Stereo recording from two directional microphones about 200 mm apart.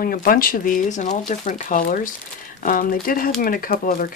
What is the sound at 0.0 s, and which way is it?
Speech, 45° left (ahead or behind).